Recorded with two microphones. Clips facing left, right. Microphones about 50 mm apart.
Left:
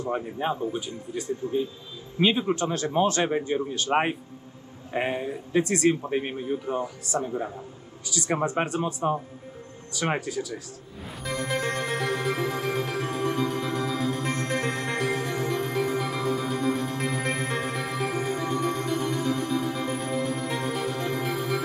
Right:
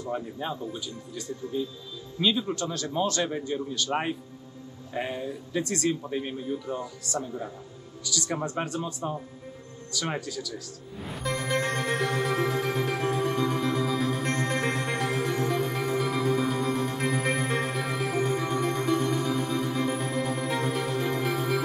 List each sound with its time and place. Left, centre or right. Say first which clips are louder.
0.0 s a man's voice: left 4 dB; left
11.0 s music: even; centre